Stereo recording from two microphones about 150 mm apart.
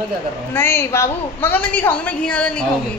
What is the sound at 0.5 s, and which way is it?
A woman's voice, 15° left (ahead or behind).